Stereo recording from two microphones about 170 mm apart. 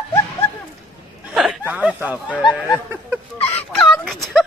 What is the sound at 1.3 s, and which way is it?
Snicker, 5° right (ahead or behind).